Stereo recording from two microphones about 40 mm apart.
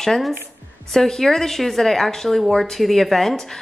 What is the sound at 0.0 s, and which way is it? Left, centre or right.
A woman's voice, centre.